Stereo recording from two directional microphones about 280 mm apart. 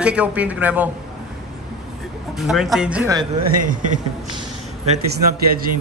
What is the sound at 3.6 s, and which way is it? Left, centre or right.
Speech, right.